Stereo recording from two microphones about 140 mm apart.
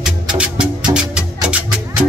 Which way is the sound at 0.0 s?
5° right (ahead or behind).